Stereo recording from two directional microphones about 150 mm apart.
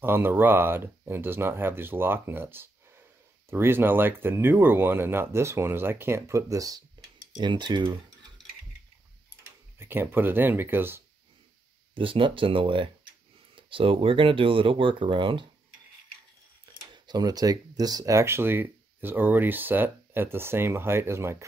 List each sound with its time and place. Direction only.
0.0 s speech: 15° right (ahead or behind); by 8.0 s 30° right (ahead or behind)
8.4 s mechanisms: 5° left (ahead or behind)
9.8 s speech: 15° right (ahead or behind)
11.9 s speech: 35° right (ahead or behind)
16.9 s speech: 30° right (ahead or behind)